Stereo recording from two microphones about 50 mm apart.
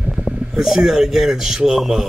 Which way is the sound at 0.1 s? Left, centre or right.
Centre.